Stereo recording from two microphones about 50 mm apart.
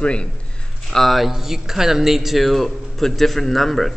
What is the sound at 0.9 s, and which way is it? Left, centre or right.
Speech, centre.